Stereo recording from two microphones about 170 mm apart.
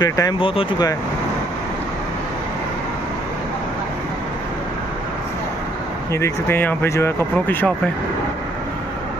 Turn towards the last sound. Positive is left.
turn(degrees=10)  # may be behind; listen again after turning